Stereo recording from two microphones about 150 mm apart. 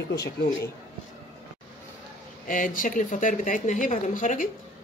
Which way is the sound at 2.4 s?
65° left (ahead or behind).